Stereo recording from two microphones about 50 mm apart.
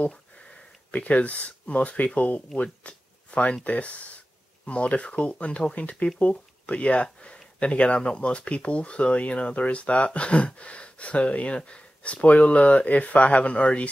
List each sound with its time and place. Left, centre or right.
0.5 s speech: left